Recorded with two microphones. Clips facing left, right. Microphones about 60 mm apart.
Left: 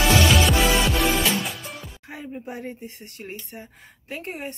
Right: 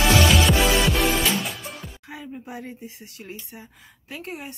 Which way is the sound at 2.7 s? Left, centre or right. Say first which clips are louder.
Left 1 dB; left.